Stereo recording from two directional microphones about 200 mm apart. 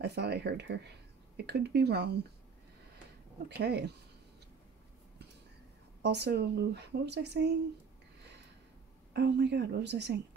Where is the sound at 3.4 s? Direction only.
55° right (ahead or behind).